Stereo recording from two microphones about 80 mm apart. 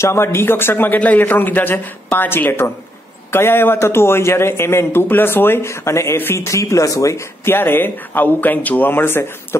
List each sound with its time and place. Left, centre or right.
0.0 s a man's voice: left
7.5 s a man's voice: left